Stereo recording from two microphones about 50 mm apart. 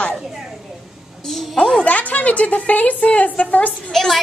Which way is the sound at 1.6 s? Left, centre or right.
Centre.